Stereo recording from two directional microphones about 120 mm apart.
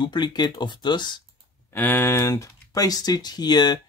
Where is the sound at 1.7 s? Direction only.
15° left (ahead or behind).